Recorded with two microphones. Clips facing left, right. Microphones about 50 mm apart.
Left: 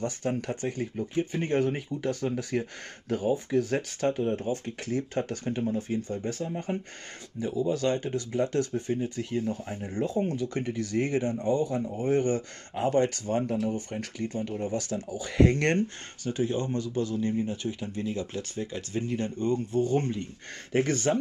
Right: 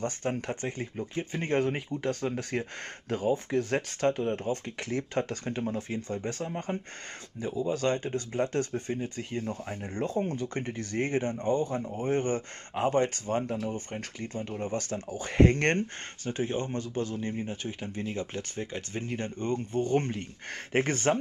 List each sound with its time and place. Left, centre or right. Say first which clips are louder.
0.4 s speech: left 2 dB; right
10.0 s speech: left 1 dB; right